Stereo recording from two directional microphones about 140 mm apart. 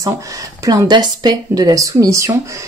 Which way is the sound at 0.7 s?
30° right (ahead or behind).